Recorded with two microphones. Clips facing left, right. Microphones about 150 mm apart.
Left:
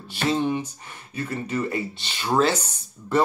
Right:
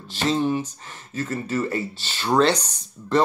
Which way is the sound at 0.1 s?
15° left (ahead or behind).